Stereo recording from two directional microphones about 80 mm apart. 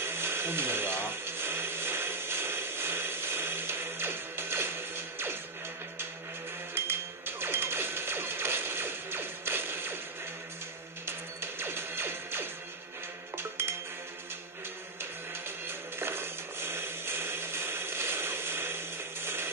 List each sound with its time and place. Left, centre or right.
0.0 s a sound: right
6.7 s music: right
11.1 s music: right
15.0 s music: right